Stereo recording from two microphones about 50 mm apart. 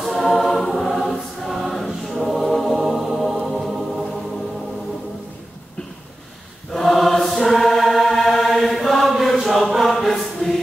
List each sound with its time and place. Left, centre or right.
0.0 s choir: centre
6.7 s choir: centre